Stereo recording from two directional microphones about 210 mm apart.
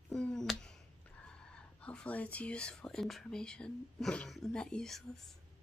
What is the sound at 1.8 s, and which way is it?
Speech, 5° left (ahead or behind).